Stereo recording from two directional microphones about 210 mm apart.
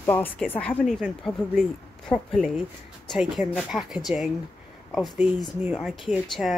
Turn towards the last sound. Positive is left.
turn(degrees=0)  # may be behind; listen again after turning